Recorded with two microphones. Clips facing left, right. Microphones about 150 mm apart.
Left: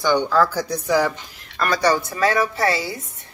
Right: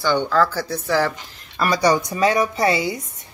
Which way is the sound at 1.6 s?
10° right (ahead or behind).